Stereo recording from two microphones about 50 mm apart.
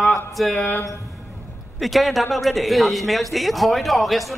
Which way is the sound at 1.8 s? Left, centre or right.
Centre.